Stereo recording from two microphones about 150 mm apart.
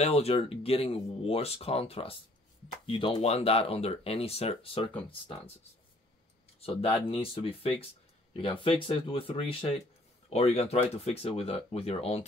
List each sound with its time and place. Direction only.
0.0 s speech: 45° left (ahead or behind)
3.2 s speech: 45° left (ahead or behind)
6.6 s speech: 40° left (ahead or behind)